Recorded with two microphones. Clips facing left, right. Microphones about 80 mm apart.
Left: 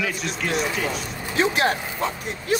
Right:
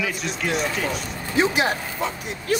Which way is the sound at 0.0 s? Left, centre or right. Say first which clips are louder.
Even; centre.